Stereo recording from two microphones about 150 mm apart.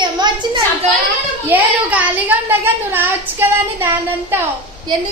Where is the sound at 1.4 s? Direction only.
10° right (ahead or behind).